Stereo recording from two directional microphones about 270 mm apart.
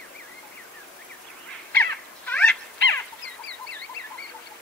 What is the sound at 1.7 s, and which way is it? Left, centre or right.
Crow, centre.